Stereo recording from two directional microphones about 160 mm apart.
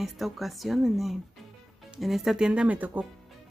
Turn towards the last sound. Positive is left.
turn(degrees=-10)  # may be behind; listen again after turning